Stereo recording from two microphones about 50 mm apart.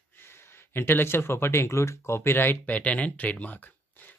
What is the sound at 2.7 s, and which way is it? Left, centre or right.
Speech, left.